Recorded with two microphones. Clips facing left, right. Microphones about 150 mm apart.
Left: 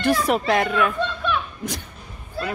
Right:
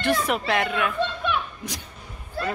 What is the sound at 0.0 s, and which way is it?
Speech, 40° left (ahead or behind).